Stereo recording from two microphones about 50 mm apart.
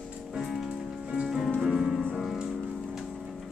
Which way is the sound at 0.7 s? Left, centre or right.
Centre.